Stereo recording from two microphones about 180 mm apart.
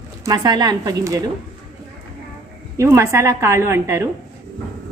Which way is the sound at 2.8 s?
15° right (ahead or behind).